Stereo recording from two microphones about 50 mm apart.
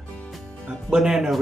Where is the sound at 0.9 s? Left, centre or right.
Centre.